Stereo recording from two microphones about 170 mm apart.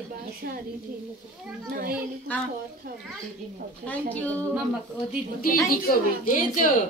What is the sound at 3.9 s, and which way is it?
Speech, 10° left (ahead or behind).